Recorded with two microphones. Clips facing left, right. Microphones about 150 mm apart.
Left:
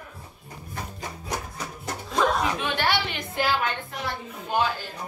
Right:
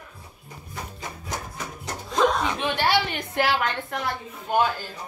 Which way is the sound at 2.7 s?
40° right (ahead or behind).